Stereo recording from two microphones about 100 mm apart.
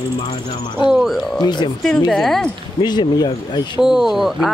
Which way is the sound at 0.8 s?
5° right (ahead or behind).